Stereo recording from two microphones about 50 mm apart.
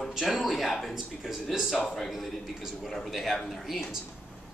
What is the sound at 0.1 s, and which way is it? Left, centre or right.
A man's voice, centre.